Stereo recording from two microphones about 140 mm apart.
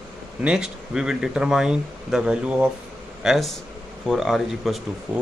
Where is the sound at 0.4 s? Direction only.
5° right (ahead or behind).